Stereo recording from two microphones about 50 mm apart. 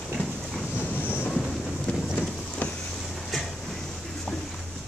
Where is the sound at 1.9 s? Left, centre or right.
Left.